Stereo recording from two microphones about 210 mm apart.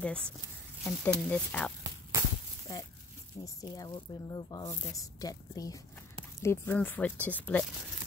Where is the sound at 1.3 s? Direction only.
5° left (ahead or behind).